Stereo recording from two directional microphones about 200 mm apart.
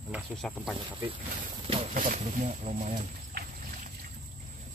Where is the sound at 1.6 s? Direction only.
30° right (ahead or behind).